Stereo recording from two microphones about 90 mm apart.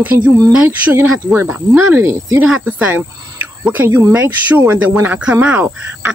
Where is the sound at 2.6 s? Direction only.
20° right (ahead or behind).